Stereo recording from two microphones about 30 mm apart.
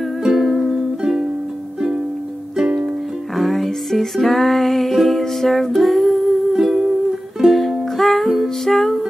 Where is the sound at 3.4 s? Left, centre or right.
Centre.